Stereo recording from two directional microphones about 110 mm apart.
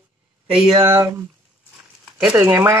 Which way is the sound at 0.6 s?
45° right (ahead or behind).